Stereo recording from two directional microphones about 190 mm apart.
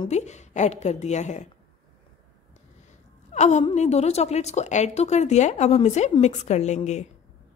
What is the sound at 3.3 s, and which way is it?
A woman's voice, 35° left (ahead or behind).